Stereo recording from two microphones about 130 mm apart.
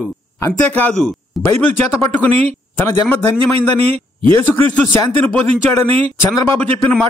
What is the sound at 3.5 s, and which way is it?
Speech, 50° right (ahead or behind).